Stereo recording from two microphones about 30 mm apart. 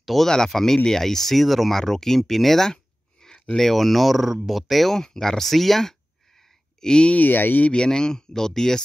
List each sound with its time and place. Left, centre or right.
0.1 s speech: centre
1.8 s speech: centre
2.7 s a sound: left
3.7 s speech: centre
4.9 s speech: centre
6.8 s speech: left
7.2 s speech: left
7.7 s speech: left